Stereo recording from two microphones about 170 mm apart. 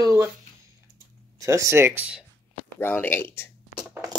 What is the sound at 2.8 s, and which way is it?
Speech, 10° left (ahead or behind).